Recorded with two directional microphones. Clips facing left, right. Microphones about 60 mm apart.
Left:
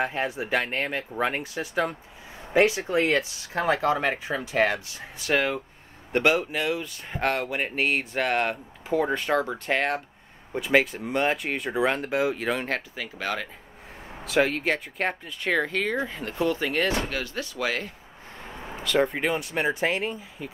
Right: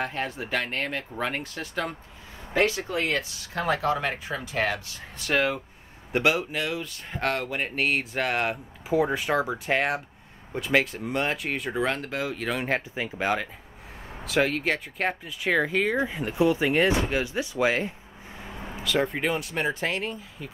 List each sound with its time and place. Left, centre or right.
0.0 s speech: centre
2.5 s speech: centre
5.1 s speech: centre
12.6 s speech: centre
14.2 s speech: centre; by 17.9 s right
18.4 s speech: centre